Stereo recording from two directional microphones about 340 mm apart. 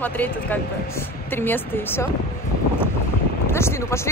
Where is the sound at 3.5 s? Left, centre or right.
Centre.